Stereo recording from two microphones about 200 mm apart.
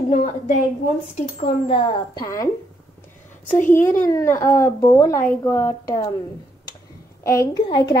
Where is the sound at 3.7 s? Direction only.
15° left (ahead or behind).